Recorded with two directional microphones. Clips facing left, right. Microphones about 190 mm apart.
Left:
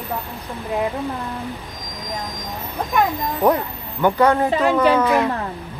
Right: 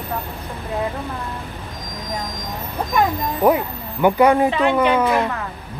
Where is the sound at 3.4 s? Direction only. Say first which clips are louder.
Right 1 dB; 15° right (ahead or behind).